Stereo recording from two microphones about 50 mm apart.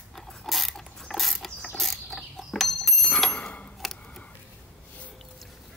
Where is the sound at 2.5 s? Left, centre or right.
Centre.